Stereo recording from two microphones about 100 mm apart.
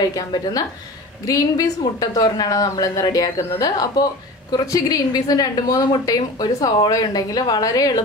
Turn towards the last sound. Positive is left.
turn(degrees=35)  # may be behind; listen again after turning